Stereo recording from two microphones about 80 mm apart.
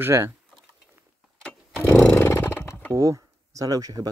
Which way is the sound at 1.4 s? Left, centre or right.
Centre.